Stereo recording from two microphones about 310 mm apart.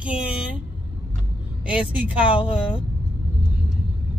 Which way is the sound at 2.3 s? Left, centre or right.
Centre.